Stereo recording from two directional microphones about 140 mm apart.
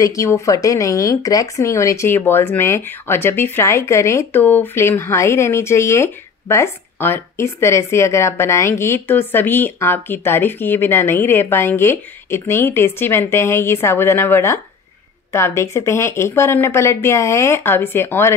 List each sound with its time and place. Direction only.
0.0 s speech: 20° left (ahead or behind)